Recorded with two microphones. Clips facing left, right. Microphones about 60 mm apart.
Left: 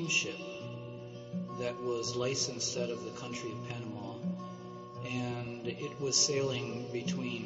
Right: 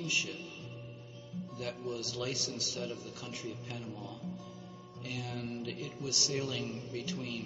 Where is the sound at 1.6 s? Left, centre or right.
Centre.